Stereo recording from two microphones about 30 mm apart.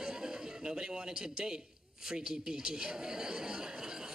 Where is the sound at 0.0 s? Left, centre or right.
Right.